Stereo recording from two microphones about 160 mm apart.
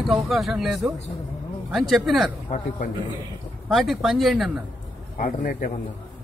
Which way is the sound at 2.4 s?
55° left (ahead or behind).